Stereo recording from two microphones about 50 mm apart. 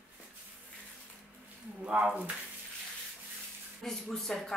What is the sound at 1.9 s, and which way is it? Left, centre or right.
Speech, right.